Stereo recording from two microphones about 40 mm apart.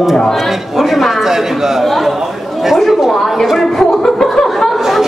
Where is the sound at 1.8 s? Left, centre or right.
Centre.